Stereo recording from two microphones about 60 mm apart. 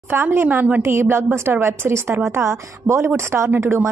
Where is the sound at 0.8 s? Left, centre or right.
Right.